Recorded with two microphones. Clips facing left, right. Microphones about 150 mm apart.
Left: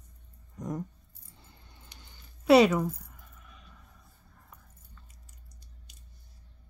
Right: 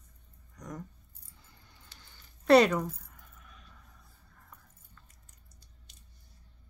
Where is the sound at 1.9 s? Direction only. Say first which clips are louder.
Left 3 dB; 20° left (ahead or behind).